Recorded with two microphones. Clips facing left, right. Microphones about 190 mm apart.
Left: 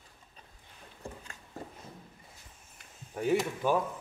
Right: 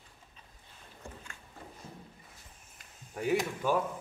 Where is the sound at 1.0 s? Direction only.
30° left (ahead or behind).